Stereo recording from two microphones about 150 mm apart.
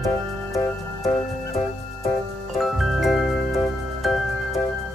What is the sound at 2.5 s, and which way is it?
Music, centre (ahead or behind).